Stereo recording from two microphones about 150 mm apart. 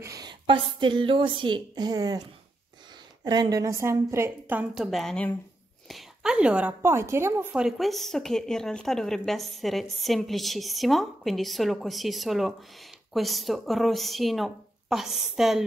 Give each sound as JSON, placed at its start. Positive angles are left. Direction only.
{"t": 0.0, "sound": "a woman's voice", "side_deg": -25}
{"t": 3.3, "sound": "a woman's voice", "side_deg": -25}
{"t": 4.9, "sound": "a woman's voice", "side_deg": 5}
{"t": 7.5, "sound": "speech", "side_deg": 0}